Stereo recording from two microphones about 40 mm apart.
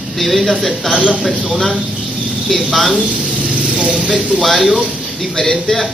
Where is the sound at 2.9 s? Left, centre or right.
Right.